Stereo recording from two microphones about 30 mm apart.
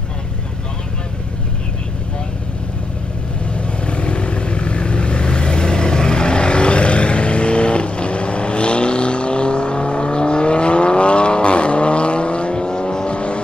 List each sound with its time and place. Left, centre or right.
3.5 s vehicle: left